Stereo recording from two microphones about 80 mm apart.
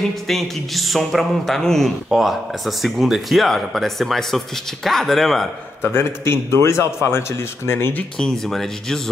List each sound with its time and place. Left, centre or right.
0.3 s speech: centre
5.8 s speech: left
8.2 s speech: centre